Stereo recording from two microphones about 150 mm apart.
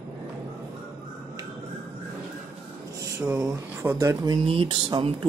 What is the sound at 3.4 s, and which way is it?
Speech, 20° right (ahead or behind).